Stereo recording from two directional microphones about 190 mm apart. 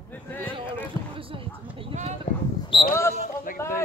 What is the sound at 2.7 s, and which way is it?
Speech, 25° left (ahead or behind).